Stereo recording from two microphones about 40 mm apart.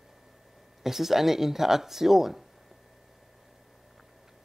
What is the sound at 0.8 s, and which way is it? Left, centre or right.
Speech, centre.